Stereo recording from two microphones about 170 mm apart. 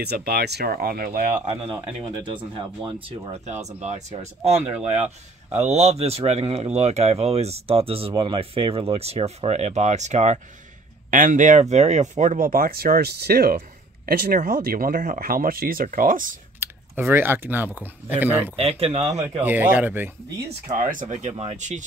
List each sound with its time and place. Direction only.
0.0 s speech: 70° right (ahead or behind)
1.4 s speech: 35° right (ahead or behind)
3.6 s speech: 40° right (ahead or behind)
16.5 s speech: 15° right (ahead or behind)
18.6 s speech: 35° right (ahead or behind)
19.4 s speech: 10° right (ahead or behind)
20.6 s speech: 50° right (ahead or behind)